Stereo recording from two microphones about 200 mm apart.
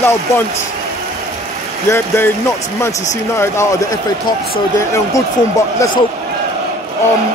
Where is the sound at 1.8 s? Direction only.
15° left (ahead or behind).